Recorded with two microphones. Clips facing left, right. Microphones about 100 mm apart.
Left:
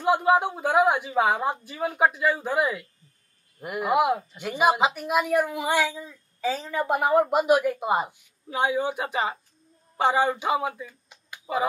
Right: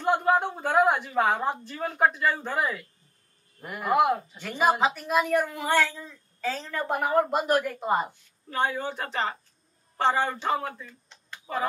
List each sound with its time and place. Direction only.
0.0 s a woman's voice: 5° left (ahead or behind)